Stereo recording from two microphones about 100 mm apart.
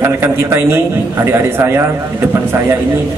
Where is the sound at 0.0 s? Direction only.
25° right (ahead or behind).